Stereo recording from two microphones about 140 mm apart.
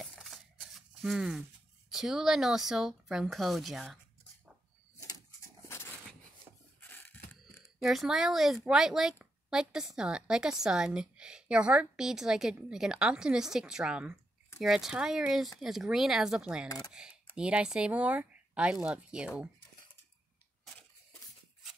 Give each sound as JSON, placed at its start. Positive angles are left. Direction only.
{"t": 0.0, "sound": "a sound", "side_deg": 0}
{"t": 1.9, "sound": "speech", "side_deg": -5}
{"t": 6.8, "sound": "a sound", "side_deg": 15}
{"t": 7.8, "sound": "speech", "side_deg": 0}
{"t": 16.6, "sound": "speech", "side_deg": 25}
{"t": 16.9, "sound": "speech", "side_deg": -5}